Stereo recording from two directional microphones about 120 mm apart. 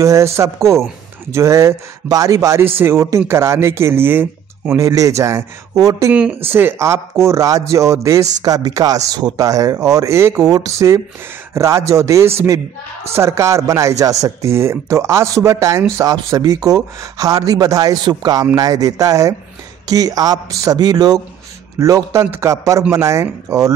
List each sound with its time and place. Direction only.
0.0 s a man's voice: 25° right (ahead or behind)